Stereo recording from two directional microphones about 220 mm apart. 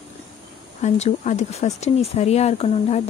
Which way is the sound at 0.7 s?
30° left (ahead or behind).